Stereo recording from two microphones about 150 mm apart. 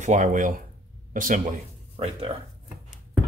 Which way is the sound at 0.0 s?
55° right (ahead or behind).